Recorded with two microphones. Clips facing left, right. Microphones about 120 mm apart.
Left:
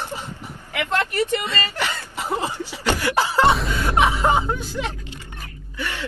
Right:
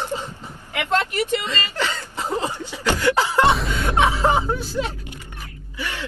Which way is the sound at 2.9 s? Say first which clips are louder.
Right 2 dB; 15° left (ahead or behind).